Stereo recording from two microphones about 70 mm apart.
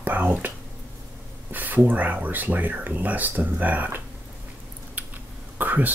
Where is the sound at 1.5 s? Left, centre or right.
Right.